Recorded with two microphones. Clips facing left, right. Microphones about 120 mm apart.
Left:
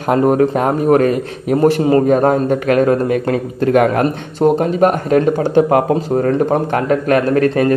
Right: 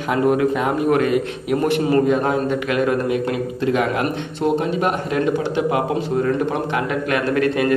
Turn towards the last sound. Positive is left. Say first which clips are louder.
# left 5 dB
turn(degrees=35)  # may be behind; listen again after turning